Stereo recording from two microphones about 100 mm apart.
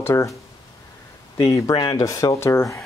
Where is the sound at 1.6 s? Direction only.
40° left (ahead or behind).